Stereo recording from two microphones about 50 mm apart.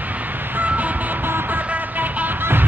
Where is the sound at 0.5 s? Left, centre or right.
Right.